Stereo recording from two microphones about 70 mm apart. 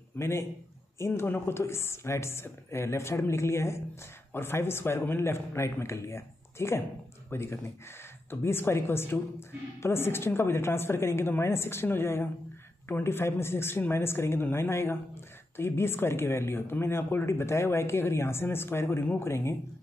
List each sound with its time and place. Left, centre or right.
0.2 s speech: left